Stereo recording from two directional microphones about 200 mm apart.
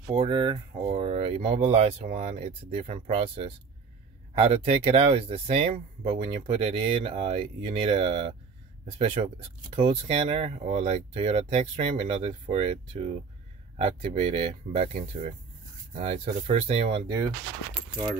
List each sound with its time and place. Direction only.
0.2 s speech: 25° right (ahead or behind)